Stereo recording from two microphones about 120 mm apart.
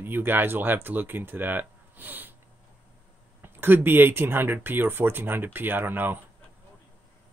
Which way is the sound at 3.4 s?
15° right (ahead or behind).